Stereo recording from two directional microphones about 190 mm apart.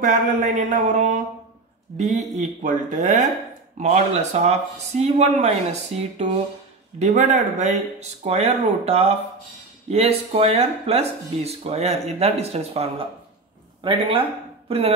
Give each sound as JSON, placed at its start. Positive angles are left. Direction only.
{"t": 0.0, "sound": "speech", "side_deg": -40}